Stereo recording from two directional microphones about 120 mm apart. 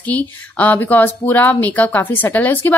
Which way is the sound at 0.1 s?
15° left (ahead or behind).